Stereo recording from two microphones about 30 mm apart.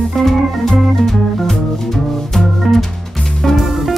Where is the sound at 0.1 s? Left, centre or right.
Centre.